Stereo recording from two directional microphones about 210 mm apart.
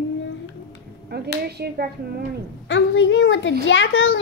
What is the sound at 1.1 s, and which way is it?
Speech, 50° right (ahead or behind).